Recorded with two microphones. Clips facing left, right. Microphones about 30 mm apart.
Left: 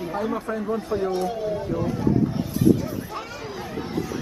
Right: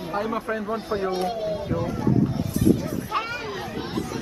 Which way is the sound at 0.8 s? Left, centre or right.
Right.